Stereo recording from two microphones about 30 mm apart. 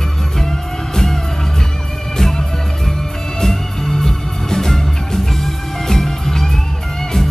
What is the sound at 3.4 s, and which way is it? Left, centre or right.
Music, centre.